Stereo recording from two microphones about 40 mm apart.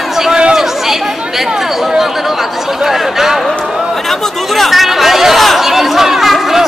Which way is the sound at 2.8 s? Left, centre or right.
Centre.